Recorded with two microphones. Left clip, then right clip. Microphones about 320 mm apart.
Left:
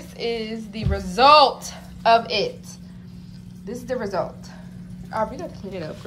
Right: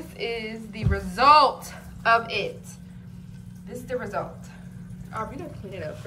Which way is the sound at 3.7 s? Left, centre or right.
Centre.